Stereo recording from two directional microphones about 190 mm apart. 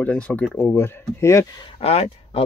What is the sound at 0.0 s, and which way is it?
Speech, 5° left (ahead or behind).